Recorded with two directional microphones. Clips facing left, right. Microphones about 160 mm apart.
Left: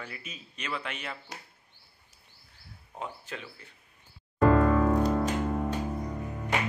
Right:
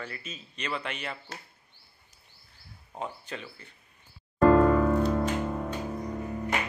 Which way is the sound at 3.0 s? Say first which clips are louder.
Right 2 dB; centre (ahead or behind).